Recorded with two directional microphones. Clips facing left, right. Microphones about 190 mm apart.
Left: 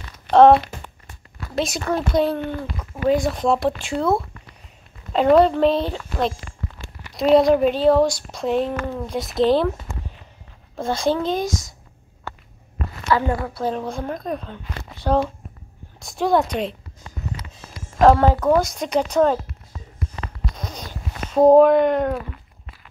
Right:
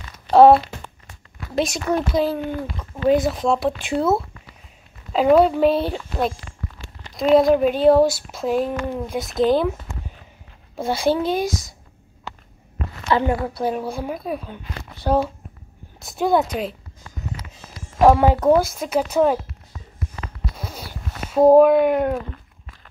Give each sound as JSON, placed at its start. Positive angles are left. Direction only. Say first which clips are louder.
{"t": 0.3, "sound": "speech", "louder": "right 1 dB", "side_deg": -5}
{"t": 1.7, "sound": "speech", "louder": "right 1 dB", "side_deg": 0}
{"t": 5.1, "sound": "speech", "louder": "even", "side_deg": -5}
{"t": 8.7, "sound": "a woman's voice", "louder": "right 1 dB", "side_deg": -15}
{"t": 9.1, "sound": "speech", "louder": "left 1 dB", "side_deg": 0}
{"t": 10.8, "sound": "a woman's voice", "louder": "right 1 dB", "side_deg": -5}
{"t": 13.1, "sound": "a woman's voice", "louder": "right 1 dB", "side_deg": -15}
{"t": 18.0, "sound": "a woman's voice", "louder": "right 1 dB", "side_deg": -10}
{"t": 20.5, "sound": "a sound", "louder": "left 1 dB", "side_deg": -5}